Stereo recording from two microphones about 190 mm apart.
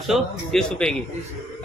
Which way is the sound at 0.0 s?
Centre (ahead or behind).